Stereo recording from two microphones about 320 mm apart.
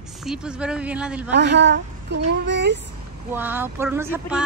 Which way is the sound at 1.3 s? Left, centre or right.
Right.